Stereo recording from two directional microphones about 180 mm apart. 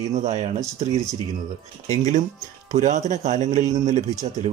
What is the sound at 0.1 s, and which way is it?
Speech, 40° right (ahead or behind).